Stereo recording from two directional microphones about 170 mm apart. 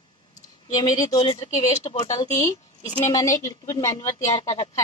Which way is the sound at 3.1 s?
20° left (ahead or behind).